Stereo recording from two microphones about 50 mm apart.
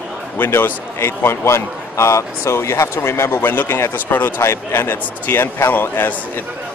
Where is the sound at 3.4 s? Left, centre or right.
Left.